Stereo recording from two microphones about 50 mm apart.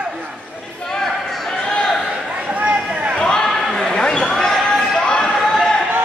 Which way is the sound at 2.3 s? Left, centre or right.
Right.